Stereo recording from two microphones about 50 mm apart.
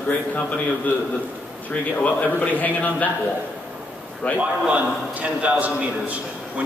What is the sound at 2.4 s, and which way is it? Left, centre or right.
Speech, left.